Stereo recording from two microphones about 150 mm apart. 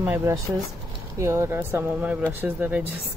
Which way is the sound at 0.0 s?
20° right (ahead or behind).